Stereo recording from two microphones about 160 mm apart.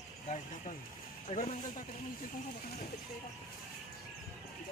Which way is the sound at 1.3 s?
50° left (ahead or behind).